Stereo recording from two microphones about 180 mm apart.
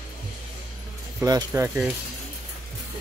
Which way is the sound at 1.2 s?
20° right (ahead or behind).